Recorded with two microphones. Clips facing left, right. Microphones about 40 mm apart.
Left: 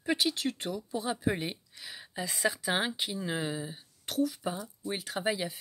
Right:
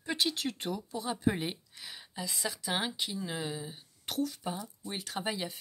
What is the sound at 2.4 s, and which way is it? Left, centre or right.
Speech, left.